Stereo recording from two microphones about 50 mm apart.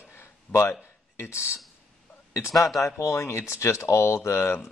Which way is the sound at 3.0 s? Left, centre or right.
Left.